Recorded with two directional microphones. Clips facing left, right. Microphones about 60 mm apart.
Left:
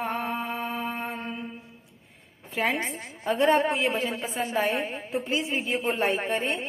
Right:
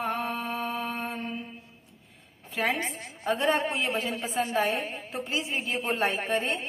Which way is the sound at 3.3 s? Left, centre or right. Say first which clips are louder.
Left 5 dB; left.